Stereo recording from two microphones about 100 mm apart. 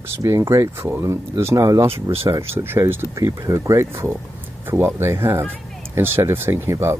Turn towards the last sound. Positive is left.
turn(degrees=-25)  # may be behind; listen again after turning